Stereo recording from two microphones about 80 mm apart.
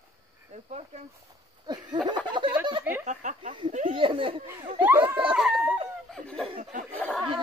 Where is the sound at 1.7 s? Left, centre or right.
Right.